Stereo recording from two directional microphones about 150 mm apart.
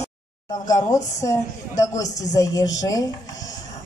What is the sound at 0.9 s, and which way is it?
A woman's voice, 20° left (ahead or behind).